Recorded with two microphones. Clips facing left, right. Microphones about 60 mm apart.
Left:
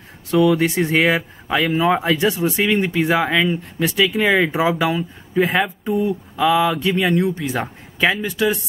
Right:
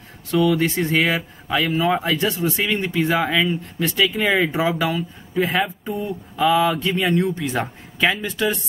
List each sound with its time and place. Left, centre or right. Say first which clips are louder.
0.6 s speech: left 2 dB; centre